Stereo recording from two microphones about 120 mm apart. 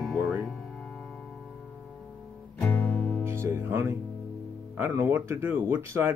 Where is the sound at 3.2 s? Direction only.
20° right (ahead or behind).